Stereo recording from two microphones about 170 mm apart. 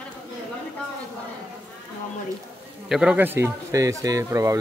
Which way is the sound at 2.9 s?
5° right (ahead or behind).